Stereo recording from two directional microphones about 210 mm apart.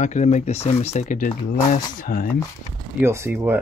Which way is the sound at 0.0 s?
35° left (ahead or behind).